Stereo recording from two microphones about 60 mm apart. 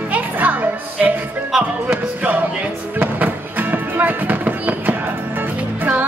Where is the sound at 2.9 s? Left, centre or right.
Right.